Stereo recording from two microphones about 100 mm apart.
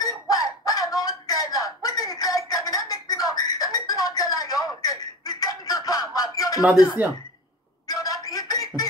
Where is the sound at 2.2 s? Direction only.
35° left (ahead or behind).